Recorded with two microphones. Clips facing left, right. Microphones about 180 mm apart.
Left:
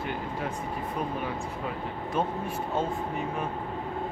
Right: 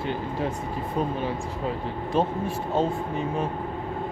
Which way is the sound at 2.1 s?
30° right (ahead or behind).